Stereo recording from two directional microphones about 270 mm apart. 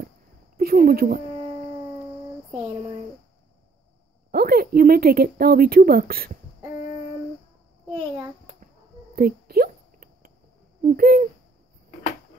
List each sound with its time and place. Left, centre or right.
0.6 s speech: right
4.3 s speech: right
9.1 s a sound: right
10.8 s speech: right